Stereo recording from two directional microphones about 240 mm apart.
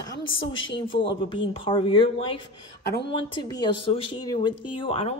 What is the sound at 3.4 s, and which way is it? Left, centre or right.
Speech, centre.